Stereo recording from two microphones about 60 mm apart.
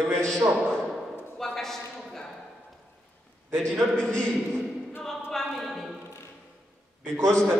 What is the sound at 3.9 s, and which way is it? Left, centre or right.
Speech, centre.